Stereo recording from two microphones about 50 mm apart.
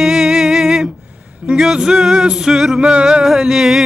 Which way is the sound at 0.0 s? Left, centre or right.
Centre.